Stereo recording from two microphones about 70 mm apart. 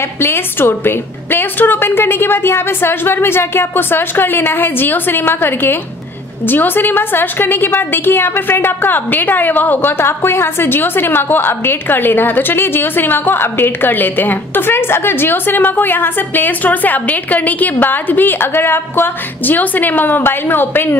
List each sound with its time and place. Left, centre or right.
0.2 s a woman's voice: left